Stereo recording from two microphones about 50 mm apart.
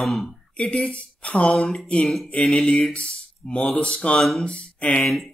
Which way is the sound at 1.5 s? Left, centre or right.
Centre.